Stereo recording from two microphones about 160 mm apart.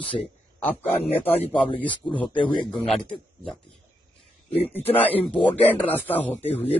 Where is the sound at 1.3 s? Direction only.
35° left (ahead or behind).